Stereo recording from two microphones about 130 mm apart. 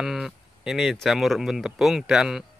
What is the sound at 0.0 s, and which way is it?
Speech, 5° right (ahead or behind).